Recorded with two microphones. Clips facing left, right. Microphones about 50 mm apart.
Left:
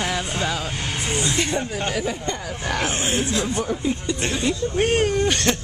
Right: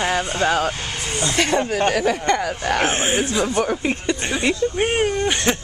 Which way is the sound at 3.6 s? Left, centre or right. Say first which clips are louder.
Right 3 dB; right.